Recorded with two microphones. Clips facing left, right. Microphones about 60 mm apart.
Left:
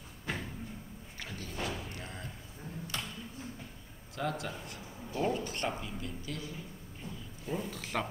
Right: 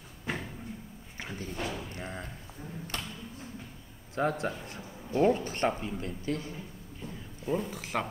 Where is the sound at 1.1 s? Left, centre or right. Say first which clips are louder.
Right 4 dB; right.